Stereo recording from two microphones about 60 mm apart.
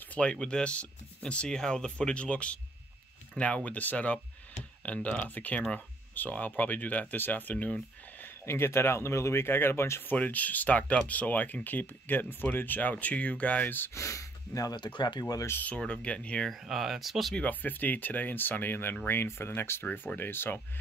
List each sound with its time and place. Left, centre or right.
0.1 s speech: centre
7.5 s speech: centre
8.5 s speech: left
10.1 s speech: left
13.9 s speech: left
15.8 s speech: centre
16.6 s speech: centre
17.4 s speech: left